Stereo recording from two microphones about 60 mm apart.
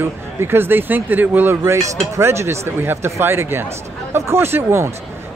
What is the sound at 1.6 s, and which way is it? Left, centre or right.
Speech, right.